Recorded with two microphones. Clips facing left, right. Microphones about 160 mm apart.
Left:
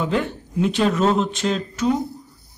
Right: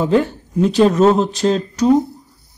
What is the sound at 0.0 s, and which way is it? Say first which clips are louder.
Speech: right 7 dB; 35° right (ahead or behind).